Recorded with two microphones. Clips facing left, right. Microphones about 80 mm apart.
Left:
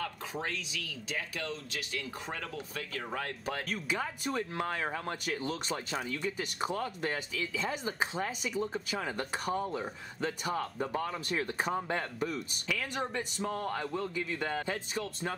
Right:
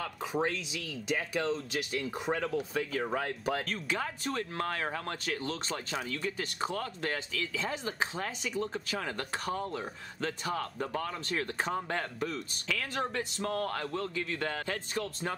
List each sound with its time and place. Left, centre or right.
0.3 s speech: right
3.2 s speech: centre
3.6 s speech: centre